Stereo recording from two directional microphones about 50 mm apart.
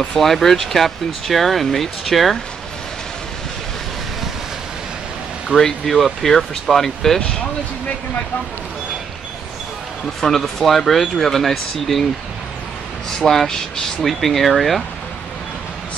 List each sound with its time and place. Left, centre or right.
0.1 s speech: centre
5.5 s speech: right
5.9 s speech: centre
10.2 s speech: centre
13.2 s speech: centre